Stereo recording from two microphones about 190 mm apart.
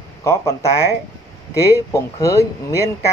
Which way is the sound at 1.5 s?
15° left (ahead or behind).